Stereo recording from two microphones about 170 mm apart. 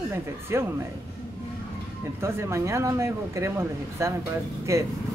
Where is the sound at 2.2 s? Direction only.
15° right (ahead or behind).